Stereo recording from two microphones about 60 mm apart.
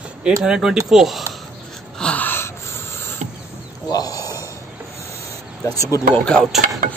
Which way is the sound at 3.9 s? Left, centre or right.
Left.